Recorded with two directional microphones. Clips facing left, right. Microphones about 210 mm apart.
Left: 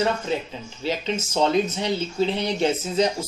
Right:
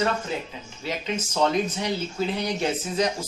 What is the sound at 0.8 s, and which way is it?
Speech, 30° left (ahead or behind).